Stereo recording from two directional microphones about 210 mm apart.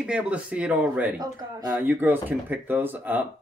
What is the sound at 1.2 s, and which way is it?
Speech, 20° right (ahead or behind).